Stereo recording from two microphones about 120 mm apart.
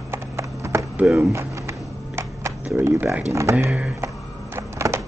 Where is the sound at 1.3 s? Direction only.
25° right (ahead or behind).